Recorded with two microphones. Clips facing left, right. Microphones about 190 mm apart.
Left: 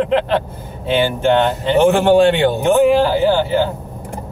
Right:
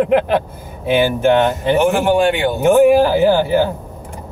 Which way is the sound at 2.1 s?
30° left (ahead or behind).